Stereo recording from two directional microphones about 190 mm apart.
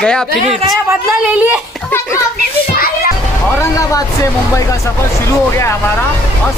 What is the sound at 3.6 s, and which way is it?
Speech, 15° left (ahead or behind).